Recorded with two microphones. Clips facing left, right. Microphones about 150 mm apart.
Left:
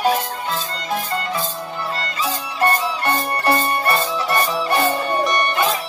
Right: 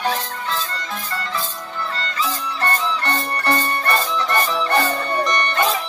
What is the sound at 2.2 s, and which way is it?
Music, 15° left (ahead or behind).